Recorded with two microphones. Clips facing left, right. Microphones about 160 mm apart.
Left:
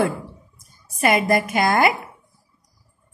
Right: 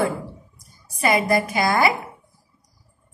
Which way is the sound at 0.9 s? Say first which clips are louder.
Left 1 dB; 55° left (ahead or behind).